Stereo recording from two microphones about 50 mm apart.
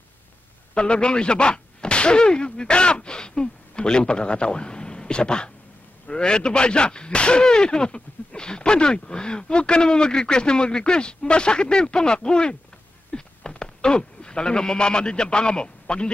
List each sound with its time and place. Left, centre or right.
0.7 s speech: centre